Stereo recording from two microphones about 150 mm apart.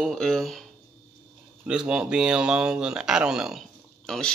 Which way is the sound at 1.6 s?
5° right (ahead or behind).